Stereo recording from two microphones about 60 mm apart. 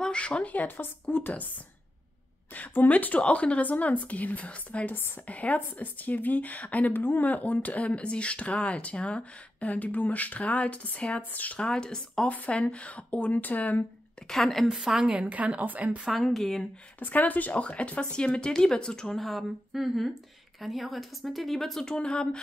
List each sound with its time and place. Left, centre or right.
0.0 s a woman's voice: centre
2.5 s a woman's voice: left
4.9 s a woman's voice: left; by 12.3 s centre
12.3 s a woman's voice: left
14.2 s speech: centre
14.7 s speech: centre
16.3 s speech: centre
17.0 s a woman's voice: left